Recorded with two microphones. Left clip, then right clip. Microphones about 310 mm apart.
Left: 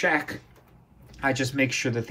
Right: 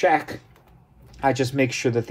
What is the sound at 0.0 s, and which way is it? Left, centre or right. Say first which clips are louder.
Speech: right 5 dB; right.